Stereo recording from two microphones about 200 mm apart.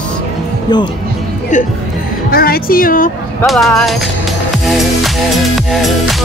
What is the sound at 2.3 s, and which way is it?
Speech, 50° left (ahead or behind).